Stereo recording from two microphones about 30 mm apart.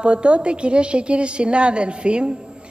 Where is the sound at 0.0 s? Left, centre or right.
Right.